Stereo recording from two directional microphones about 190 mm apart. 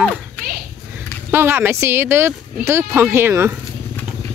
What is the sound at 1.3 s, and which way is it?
Speech, 10° right (ahead or behind).